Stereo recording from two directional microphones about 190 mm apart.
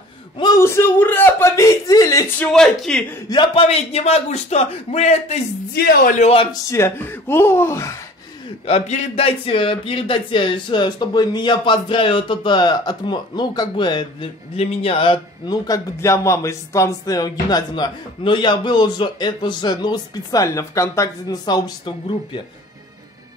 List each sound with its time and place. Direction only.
0.4 s a sound: 20° left (ahead or behind)
2.5 s speech: 5° left (ahead or behind)
3.3 s a man's voice: 25° left (ahead or behind)
5.8 s a man's voice: 50° left (ahead or behind); by 6.5 s 30° left (ahead or behind)
6.7 s speech: 10° left (ahead or behind)
8.6 s speech: 35° left (ahead or behind)